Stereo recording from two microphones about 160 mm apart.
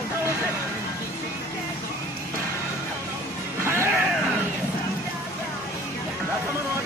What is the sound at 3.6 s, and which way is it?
Music, 15° right (ahead or behind).